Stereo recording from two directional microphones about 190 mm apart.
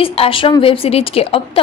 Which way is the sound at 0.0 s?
30° left (ahead or behind).